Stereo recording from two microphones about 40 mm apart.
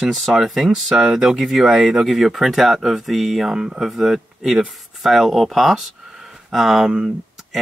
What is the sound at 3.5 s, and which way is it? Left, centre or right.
Speech, centre.